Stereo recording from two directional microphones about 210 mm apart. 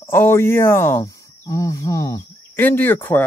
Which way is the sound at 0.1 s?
10° left (ahead or behind).